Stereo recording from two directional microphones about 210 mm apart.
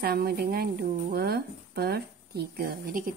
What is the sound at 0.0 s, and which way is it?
Speech, 45° right (ahead or behind).